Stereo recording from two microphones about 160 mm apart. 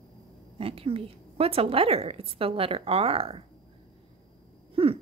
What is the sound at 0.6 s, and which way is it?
A woman's voice, 35° right (ahead or behind).